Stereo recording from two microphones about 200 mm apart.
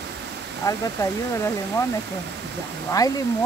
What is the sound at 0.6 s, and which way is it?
Speech, 15° left (ahead or behind).